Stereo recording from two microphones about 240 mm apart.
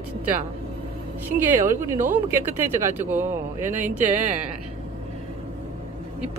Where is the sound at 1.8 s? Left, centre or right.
Centre.